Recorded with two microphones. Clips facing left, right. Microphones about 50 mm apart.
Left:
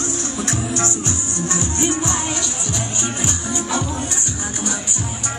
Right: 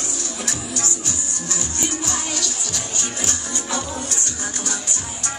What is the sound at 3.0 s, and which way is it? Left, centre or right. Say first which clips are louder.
Music: left 3 dB; centre.